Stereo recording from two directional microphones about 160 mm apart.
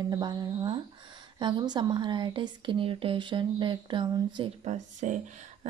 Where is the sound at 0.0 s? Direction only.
25° right (ahead or behind).